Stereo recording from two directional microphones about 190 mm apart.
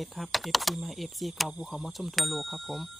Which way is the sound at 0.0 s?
Centre (ahead or behind).